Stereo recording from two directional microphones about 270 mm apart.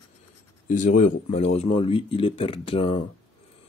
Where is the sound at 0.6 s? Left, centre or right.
Left.